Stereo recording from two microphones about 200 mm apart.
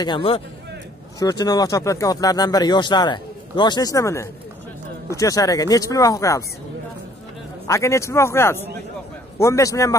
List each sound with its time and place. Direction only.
0.0 s speech: 25° left (ahead or behind)
7.6 s speech: 15° left (ahead or behind)